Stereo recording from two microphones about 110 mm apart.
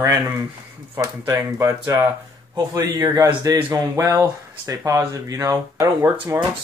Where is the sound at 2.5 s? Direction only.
35° right (ahead or behind).